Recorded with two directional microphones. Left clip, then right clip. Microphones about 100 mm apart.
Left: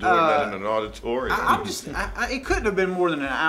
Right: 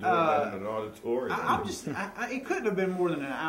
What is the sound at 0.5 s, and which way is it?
Speech, 30° left (ahead or behind).